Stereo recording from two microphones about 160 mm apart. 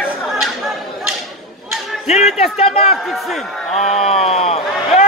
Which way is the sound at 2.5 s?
40° left (ahead or behind).